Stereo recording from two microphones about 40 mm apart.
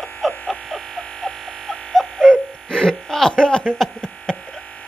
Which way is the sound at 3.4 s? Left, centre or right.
Left.